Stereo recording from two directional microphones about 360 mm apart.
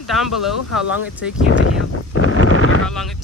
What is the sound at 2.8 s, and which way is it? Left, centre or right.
Speech, centre.